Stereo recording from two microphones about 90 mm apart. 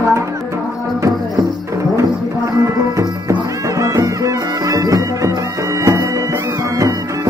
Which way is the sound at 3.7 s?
35° right (ahead or behind).